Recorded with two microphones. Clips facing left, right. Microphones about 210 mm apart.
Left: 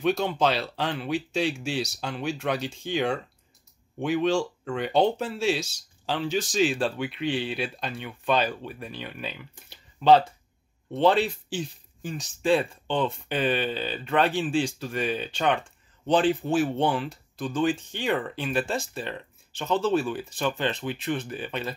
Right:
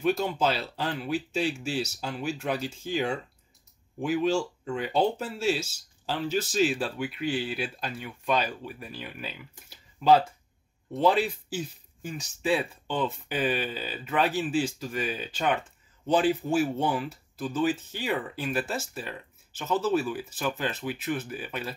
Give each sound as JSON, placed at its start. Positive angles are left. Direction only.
{"t": 0.0, "sound": "speech", "side_deg": -5}
{"t": 0.7, "sound": "speech", "side_deg": 70}
{"t": 1.1, "sound": "speech", "side_deg": -5}
{"t": 4.0, "sound": "speech", "side_deg": -5}